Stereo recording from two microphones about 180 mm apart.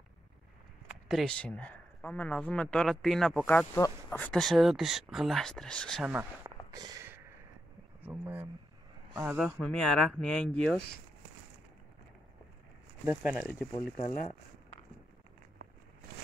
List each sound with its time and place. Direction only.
0.8 s speech: centre (ahead or behind)
6.4 s a sound: 20° right (ahead or behind)
9.1 s speech: 10° right (ahead or behind)
9.4 s speech: 5° left (ahead or behind)
13.0 s speech: 10° right (ahead or behind)
13.7 s speech: 40° left (ahead or behind)